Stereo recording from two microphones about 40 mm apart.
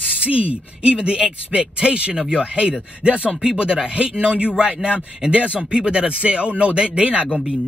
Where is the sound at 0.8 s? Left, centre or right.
Right.